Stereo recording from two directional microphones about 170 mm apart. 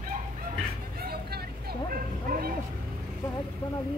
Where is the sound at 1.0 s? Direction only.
65° right (ahead or behind).